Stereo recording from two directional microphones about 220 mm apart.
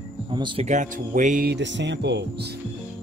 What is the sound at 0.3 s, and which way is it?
Speech, 20° right (ahead or behind).